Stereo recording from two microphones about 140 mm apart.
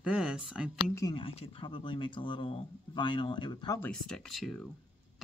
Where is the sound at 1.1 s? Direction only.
40° left (ahead or behind).